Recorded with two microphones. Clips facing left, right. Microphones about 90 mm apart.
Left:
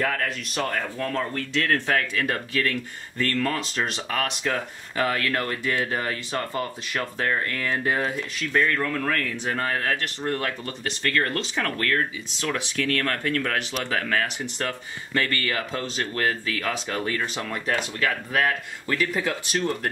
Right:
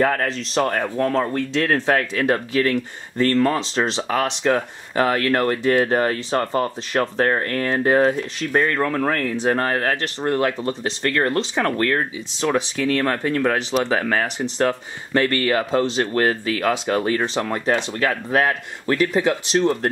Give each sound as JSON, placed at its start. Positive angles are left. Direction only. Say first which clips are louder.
{"t": 0.0, "sound": "speech", "louder": "right 6 dB", "side_deg": -40}